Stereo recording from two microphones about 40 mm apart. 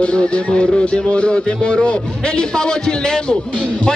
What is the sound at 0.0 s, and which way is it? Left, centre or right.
Speech, left.